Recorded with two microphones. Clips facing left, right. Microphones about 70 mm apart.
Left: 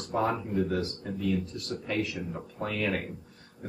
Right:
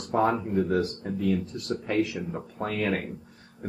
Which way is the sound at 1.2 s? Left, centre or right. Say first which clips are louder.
Right 3 dB; right.